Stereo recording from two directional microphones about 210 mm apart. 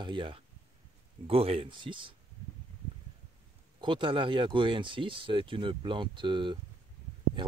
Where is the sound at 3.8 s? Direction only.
25° right (ahead or behind).